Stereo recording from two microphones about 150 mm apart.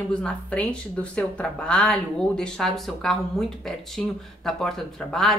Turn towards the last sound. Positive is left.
turn(degrees=5)  # may be behind; listen again after turning